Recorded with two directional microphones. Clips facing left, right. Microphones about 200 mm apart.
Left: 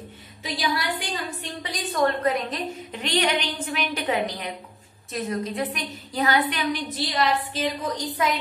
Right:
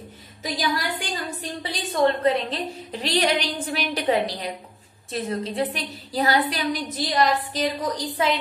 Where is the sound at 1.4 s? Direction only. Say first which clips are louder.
Right 1 dB; 30° right (ahead or behind).